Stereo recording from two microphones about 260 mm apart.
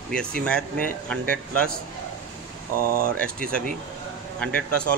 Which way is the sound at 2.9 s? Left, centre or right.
Right.